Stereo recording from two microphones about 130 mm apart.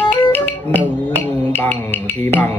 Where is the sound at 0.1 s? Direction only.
15° left (ahead or behind).